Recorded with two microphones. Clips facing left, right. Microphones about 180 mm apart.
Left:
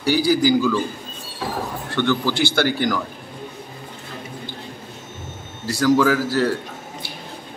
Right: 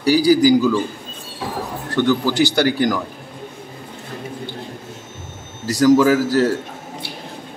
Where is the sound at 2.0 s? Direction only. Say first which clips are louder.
Right 3 dB; 10° right (ahead or behind).